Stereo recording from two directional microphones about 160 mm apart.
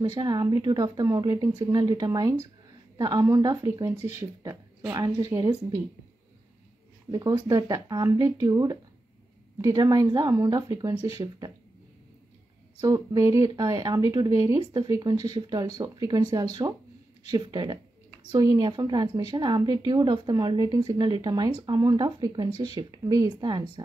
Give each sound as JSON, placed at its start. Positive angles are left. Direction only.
{"t": 0.0, "sound": "speech", "side_deg": -25}
{"t": 7.1, "sound": "speech", "side_deg": -20}
{"t": 12.8, "sound": "speech", "side_deg": -20}